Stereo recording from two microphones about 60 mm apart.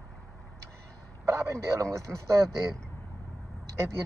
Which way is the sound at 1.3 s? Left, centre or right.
Right.